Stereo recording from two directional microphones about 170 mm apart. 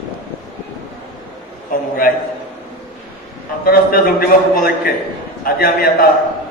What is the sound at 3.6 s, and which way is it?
A man's voice, 60° left (ahead or behind).